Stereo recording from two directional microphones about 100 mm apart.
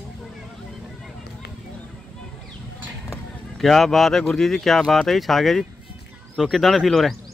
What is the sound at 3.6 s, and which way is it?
Speech, centre (ahead or behind).